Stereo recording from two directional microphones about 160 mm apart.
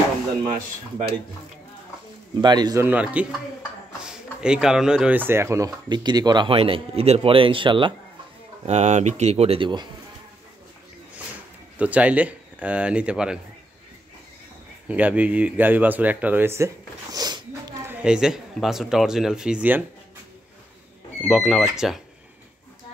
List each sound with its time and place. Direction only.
2.4 s speech: 25° right (ahead or behind)
2.8 s speech: 10° right (ahead or behind); by 7.9 s 30° right (ahead or behind)
8.6 s speech: 45° right (ahead or behind)
11.8 s speech: 10° right (ahead or behind)
14.9 s speech: 10° right (ahead or behind); by 17.7 s 25° right (ahead or behind)
17.8 s speech: 5° right (ahead or behind)
21.2 s speech: centre (ahead or behind)